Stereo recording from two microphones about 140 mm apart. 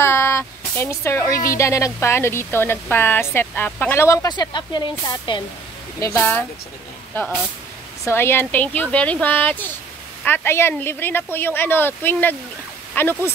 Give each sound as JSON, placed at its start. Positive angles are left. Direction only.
{"t": 0.0, "sound": "a sound", "side_deg": 20}
{"t": 1.6, "sound": "speech", "side_deg": 20}
{"t": 5.9, "sound": "speech", "side_deg": 20}
{"t": 8.0, "sound": "speech", "side_deg": 15}